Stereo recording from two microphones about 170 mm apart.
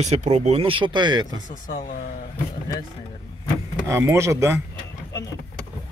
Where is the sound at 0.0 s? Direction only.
40° right (ahead or behind).